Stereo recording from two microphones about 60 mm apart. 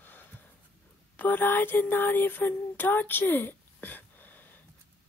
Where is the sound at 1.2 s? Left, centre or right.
Left.